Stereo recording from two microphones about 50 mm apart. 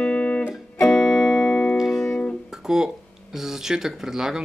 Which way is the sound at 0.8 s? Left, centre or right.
Centre.